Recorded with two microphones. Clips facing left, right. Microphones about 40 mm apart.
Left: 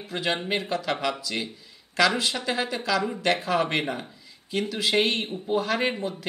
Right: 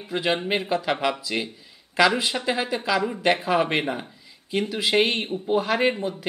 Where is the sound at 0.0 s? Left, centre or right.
Centre.